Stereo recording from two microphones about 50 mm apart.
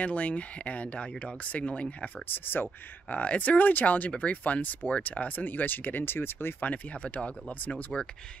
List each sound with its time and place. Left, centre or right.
0.0 s speech: left
2.2 s speech: left
3.2 s speech: left
6.6 s speech: left